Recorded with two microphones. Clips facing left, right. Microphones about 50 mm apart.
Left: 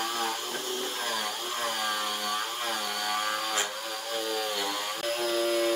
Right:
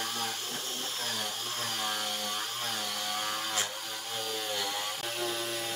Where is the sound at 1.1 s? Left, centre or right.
Left.